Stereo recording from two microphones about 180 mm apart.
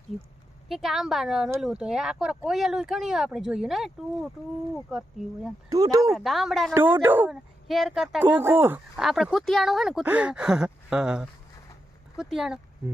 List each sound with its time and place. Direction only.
0.7 s speech: centre (ahead or behind)
5.7 s speech: 20° right (ahead or behind)
6.1 s speech: centre (ahead or behind)
6.7 s speech: 10° right (ahead or behind)
7.6 s speech: centre (ahead or behind)